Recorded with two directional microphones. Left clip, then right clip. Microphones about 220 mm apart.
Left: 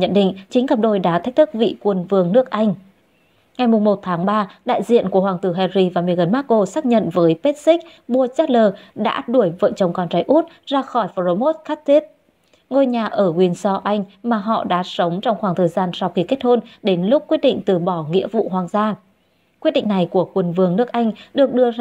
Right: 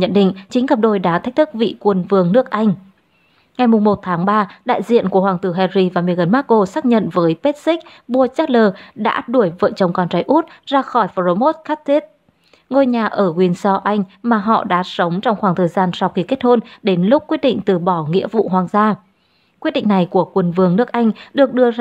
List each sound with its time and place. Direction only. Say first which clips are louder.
0.0 s a woman's voice: right 1 dB; 10° right (ahead or behind)